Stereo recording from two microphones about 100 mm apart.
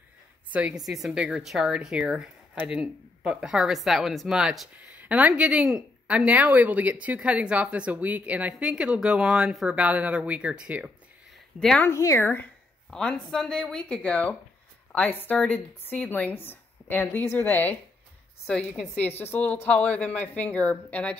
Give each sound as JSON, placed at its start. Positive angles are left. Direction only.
{"t": 0.5, "sound": "a woman's voice", "side_deg": -15}
{"t": 0.8, "sound": "speech", "side_deg": -5}
{"t": 11.9, "sound": "speech", "side_deg": 35}
{"t": 12.2, "sound": "speech", "side_deg": 20}
{"t": 12.9, "sound": "a woman's voice", "side_deg": 5}